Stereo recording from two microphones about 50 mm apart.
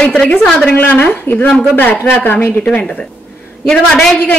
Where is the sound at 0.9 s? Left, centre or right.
Left.